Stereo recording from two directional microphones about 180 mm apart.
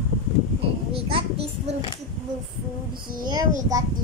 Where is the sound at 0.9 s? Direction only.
30° right (ahead or behind).